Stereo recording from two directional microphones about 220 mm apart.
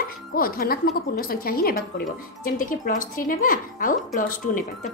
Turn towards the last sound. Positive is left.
turn(degrees=35)  # may be behind; listen again after turning